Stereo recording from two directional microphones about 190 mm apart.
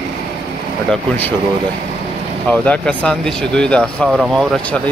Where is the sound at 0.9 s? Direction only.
10° left (ahead or behind).